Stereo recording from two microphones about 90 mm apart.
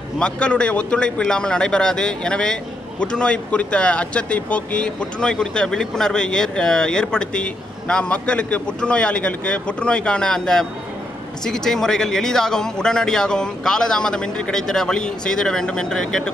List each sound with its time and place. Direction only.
0.2 s a man's voice: 10° left (ahead or behind)